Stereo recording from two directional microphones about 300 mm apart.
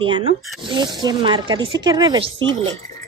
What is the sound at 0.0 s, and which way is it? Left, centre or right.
Speech, centre.